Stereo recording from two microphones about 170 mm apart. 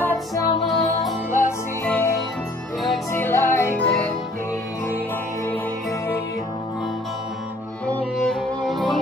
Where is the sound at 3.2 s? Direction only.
15° left (ahead or behind).